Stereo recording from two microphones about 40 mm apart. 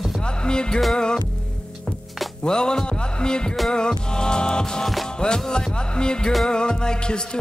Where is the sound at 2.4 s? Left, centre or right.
Centre.